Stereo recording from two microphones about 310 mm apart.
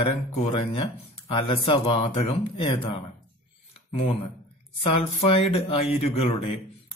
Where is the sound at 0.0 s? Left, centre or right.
Centre.